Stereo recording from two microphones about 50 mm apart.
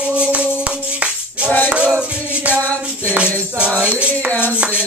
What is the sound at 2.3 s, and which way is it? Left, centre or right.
Music, right.